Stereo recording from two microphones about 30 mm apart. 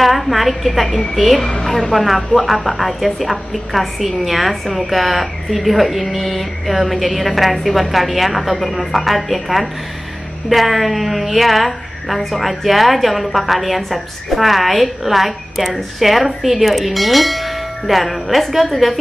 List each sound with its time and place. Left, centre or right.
0.0 s a woman's voice: centre
1.4 s a woman's voice: left
1.7 s a woman's voice: centre